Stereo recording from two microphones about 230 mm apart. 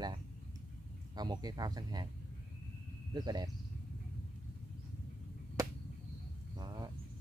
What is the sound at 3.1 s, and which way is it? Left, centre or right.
Speech, centre.